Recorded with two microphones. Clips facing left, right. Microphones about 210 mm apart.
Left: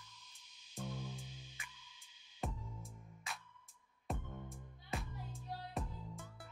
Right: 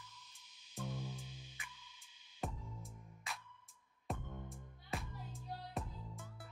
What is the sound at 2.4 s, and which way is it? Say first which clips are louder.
Music: even; centre (ahead or behind).